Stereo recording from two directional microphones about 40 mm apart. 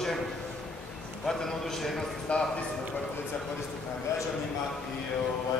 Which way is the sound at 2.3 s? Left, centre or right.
Left.